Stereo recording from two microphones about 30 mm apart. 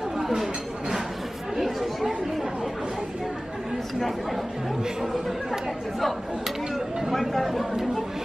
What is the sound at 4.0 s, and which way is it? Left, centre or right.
Chatter, centre.